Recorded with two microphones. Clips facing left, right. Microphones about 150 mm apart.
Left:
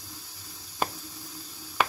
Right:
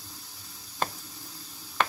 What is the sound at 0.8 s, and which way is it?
Squish, 10° left (ahead or behind).